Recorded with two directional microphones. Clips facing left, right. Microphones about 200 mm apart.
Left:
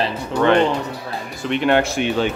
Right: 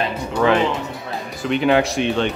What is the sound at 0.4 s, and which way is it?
Speech, 5° right (ahead or behind).